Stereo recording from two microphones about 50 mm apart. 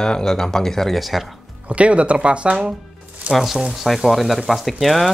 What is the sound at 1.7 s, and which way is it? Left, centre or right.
Speech, right.